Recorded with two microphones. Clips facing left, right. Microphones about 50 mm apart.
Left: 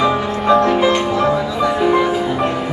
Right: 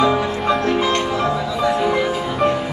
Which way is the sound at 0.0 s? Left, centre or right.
Centre.